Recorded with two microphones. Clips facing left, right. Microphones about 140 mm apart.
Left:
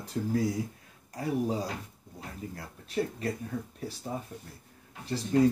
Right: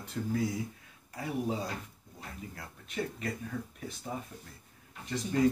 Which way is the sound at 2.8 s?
35° left (ahead or behind).